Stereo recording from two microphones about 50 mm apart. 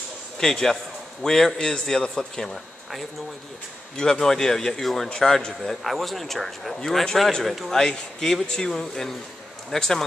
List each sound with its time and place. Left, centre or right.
0.4 s a man's voice: centre
3.9 s a man's voice: centre
7.7 s a man's voice: centre